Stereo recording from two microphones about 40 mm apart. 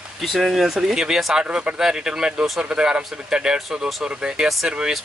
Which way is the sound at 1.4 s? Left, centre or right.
Right.